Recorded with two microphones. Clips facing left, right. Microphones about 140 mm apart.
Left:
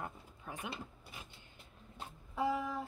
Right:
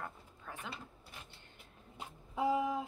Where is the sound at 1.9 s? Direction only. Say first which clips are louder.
Right 1 dB; 10° right (ahead or behind).